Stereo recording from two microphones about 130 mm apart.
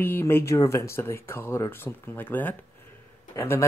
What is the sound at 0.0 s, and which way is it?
Speech, 15° left (ahead or behind).